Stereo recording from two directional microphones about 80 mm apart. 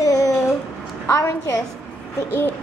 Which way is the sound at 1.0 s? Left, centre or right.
Left.